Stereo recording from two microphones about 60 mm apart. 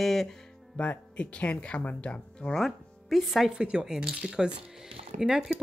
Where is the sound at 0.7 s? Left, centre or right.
Left.